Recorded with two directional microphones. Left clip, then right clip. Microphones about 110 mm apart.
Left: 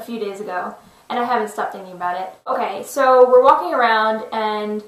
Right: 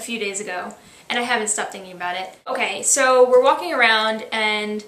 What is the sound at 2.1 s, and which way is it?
Speech, 40° right (ahead or behind).